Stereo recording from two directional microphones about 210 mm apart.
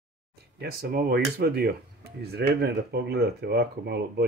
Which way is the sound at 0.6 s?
50° right (ahead or behind).